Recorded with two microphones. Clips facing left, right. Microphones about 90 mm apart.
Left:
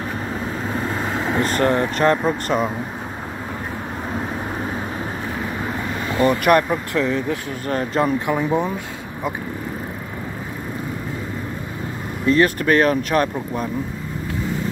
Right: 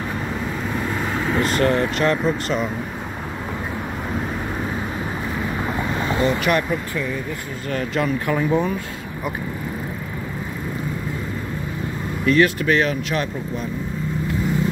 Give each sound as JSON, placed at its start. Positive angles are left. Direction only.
{"t": 1.4, "sound": "speech", "side_deg": 35}
{"t": 6.2, "sound": "speech", "side_deg": 50}
{"t": 6.9, "sound": "speech", "side_deg": 90}
{"t": 7.6, "sound": "speech", "side_deg": 40}
{"t": 8.3, "sound": "speech", "side_deg": 20}
{"t": 12.3, "sound": "speech", "side_deg": 40}